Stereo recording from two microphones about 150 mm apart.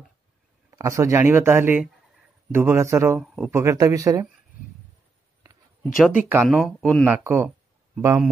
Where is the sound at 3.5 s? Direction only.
20° right (ahead or behind).